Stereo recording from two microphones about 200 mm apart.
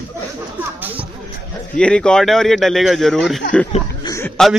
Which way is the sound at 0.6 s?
10° right (ahead or behind).